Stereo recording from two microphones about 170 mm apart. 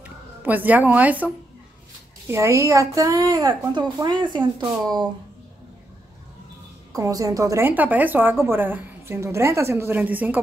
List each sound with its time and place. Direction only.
0.0 s a woman's voice: 10° right (ahead or behind); by 5.1 s 25° right (ahead or behind)
6.9 s a woman's voice: 20° right (ahead or behind)